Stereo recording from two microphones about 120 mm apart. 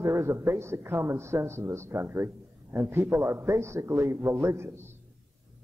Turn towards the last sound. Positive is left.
turn(degrees=-20)  # may be behind; listen again after turning